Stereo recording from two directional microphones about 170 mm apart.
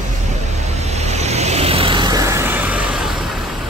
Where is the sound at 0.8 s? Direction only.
40° right (ahead or behind); by 3.4 s centre (ahead or behind).